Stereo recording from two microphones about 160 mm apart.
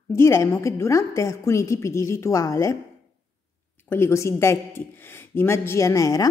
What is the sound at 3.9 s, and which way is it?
A woman's voice, 15° left (ahead or behind).